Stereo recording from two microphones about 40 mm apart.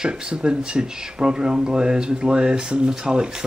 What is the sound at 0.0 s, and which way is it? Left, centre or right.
Speech, right.